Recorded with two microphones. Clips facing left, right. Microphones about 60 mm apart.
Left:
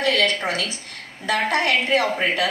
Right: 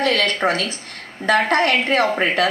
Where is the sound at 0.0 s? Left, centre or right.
Right.